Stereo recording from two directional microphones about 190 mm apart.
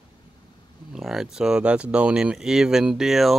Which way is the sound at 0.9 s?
5° right (ahead or behind).